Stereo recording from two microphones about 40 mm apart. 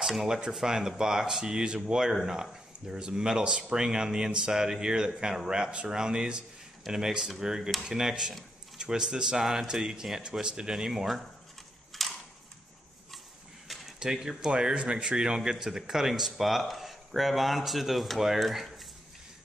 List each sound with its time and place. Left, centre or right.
0.0 s speech: centre
0.3 s speech: centre
2.0 s speech: centre
2.9 s speech: centre
8.7 s a sound: centre
9.0 s speech: centre
9.4 s speech: centre
9.8 s speech: centre
10.7 s speech: centre
11.9 s a sound: centre
13.7 s a sound: centre
13.9 s speech: centre